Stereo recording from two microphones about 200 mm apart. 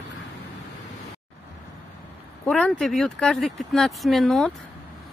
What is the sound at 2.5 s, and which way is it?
Speech, 5° left (ahead or behind).